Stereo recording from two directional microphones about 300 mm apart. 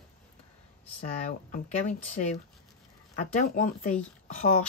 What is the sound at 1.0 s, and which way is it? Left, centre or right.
Speech, left.